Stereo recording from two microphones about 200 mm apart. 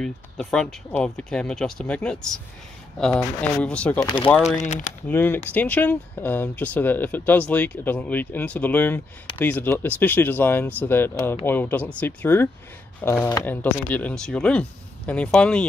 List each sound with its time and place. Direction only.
0.0 s speech: 5° left (ahead or behind)
4.0 s speech: 20° left (ahead or behind)
4.6 s speech: 40° left (ahead or behind)
5.0 s speech: 10° left (ahead or behind)